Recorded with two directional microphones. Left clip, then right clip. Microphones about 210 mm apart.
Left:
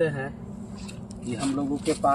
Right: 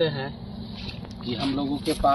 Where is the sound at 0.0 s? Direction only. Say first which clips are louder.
Right 1 dB; 15° left (ahead or behind).